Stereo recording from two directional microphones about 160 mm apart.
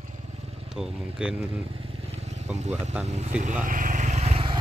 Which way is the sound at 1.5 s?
35° right (ahead or behind).